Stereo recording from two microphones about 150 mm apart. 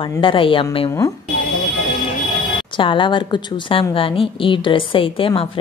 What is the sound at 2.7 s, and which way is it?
Speech, 35° left (ahead or behind).